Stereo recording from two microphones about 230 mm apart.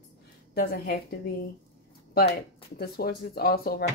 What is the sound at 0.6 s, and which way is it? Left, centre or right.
Speech, left.